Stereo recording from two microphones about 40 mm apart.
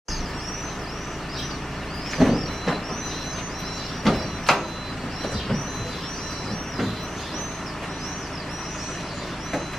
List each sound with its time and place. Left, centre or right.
2.1 s vehicle: centre
4.0 s vehicle: centre